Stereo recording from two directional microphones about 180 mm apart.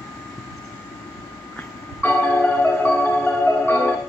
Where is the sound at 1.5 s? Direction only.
10° left (ahead or behind).